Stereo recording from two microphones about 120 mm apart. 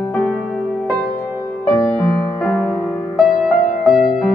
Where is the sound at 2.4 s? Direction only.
10° left (ahead or behind).